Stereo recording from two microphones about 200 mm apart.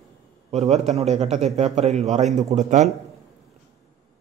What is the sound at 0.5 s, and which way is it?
A man's voice, 35° right (ahead or behind).